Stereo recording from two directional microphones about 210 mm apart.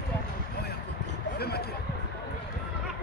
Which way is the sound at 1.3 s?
50° left (ahead or behind).